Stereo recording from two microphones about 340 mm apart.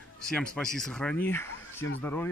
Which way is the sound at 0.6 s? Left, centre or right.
Centre.